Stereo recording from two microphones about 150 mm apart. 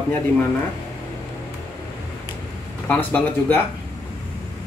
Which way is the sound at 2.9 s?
10° left (ahead or behind).